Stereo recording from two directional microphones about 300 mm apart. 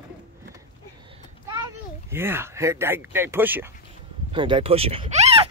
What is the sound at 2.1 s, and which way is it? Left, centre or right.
Speech, centre.